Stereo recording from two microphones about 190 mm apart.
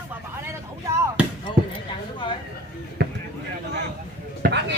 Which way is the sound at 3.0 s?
60° right (ahead or behind).